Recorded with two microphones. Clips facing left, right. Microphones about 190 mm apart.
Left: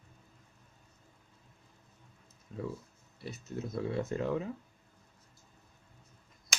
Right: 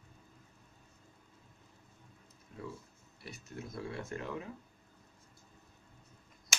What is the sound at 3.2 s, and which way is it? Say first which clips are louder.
Speech: left 6 dB; 25° left (ahead or behind).